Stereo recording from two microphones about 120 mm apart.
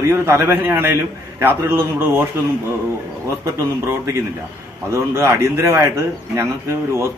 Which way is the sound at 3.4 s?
20° right (ahead or behind).